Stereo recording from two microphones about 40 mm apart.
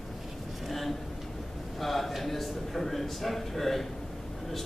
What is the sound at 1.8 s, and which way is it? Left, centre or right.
A man's voice, centre.